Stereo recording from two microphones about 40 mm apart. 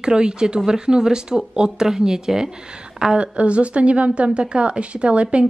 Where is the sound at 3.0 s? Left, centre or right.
Right.